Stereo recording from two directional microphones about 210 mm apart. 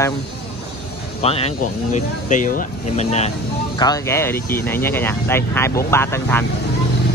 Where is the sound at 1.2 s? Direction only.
30° left (ahead or behind).